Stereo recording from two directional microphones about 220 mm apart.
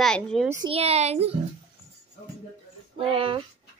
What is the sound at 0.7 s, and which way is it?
Speech, 30° right (ahead or behind).